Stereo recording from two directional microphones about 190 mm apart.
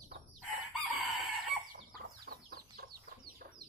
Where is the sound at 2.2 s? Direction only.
55° right (ahead or behind).